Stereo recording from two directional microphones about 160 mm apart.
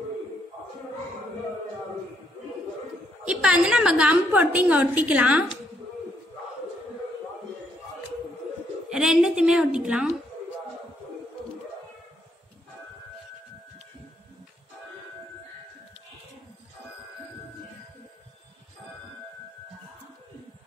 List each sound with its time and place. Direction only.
3.3 s a woman's voice: 5° right (ahead or behind)
8.9 s a woman's voice: 5° right (ahead or behind)